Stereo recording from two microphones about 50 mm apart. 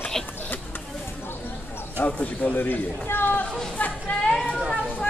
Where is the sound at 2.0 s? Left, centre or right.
Left.